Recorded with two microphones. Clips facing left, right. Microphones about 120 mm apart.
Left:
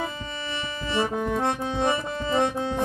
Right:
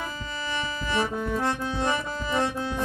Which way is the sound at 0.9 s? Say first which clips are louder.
Left 2 dB; 20° left (ahead or behind).